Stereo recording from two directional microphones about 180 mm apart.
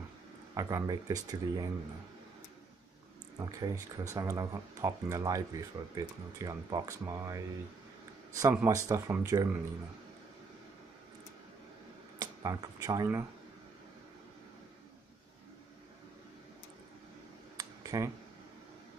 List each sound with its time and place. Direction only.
0.6 s speech: 20° right (ahead or behind)
3.3 s speech: 20° right (ahead or behind)
12.2 s speech: 20° right (ahead or behind)
17.6 s a sound: 20° right (ahead or behind)